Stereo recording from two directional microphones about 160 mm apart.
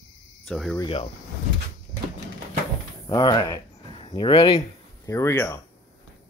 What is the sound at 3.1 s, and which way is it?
Speech, 25° left (ahead or behind).